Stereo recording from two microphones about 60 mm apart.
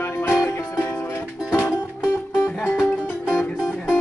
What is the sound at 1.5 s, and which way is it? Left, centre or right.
Music, left.